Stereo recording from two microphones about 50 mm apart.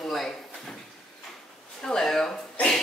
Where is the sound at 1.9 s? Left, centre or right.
Centre.